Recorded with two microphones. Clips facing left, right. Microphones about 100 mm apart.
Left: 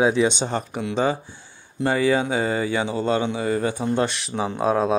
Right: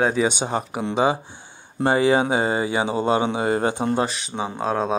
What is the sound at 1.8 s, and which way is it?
Speech, 20° right (ahead or behind).